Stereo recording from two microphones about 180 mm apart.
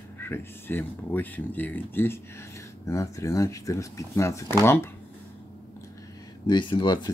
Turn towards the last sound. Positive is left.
turn(degrees=25)  # may be behind; listen again after turning